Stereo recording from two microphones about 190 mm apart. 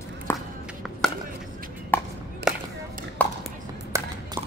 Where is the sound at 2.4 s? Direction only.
55° right (ahead or behind).